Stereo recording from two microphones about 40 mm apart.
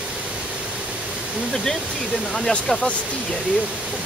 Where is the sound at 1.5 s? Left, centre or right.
Centre.